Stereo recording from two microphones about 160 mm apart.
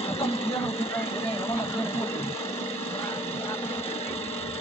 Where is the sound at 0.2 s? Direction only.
40° left (ahead or behind).